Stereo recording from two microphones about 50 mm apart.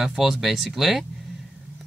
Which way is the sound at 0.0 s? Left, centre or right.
Centre.